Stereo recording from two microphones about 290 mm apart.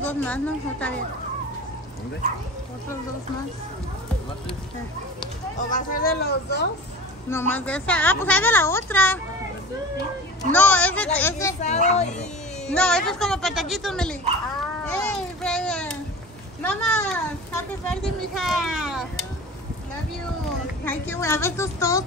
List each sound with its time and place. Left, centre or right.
0.0 s a child's voice: centre
5.7 s speech: left
7.2 s a woman's voice: centre
10.5 s a child's voice: centre
11.9 s speech: left
12.6 s a child's voice: centre
14.9 s babbling: centre
16.6 s a child's voice: centre
20.8 s a woman's voice: centre